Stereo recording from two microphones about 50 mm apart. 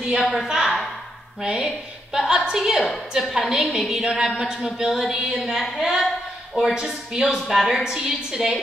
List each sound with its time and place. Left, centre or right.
0.1 s a woman's voice: centre
1.4 s a woman's voice: centre
7.4 s a woman's voice: centre